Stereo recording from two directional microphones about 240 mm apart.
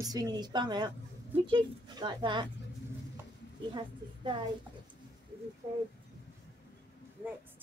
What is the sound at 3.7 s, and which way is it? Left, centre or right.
Speech, centre.